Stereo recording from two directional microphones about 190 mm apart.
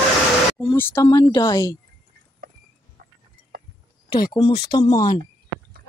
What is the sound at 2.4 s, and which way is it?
Horse, 55° right (ahead or behind).